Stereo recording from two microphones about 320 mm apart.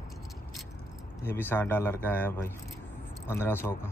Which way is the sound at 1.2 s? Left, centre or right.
Centre.